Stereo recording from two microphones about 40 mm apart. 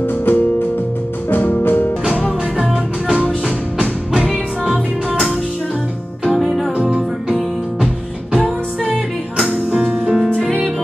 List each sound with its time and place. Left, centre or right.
0.0 s music: left
2.5 s music: centre
6.2 s music: centre
9.7 s music: centre